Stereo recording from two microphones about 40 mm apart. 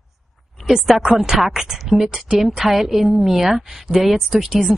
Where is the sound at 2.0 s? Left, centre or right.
Centre.